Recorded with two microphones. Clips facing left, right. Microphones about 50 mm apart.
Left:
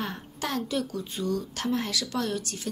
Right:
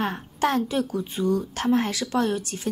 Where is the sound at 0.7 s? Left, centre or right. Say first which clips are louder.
Right 4 dB; right.